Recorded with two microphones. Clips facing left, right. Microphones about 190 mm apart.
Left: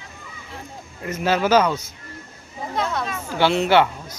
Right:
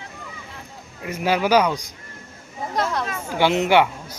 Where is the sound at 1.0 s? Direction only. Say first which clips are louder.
Left 1 dB; 10° right (ahead or behind).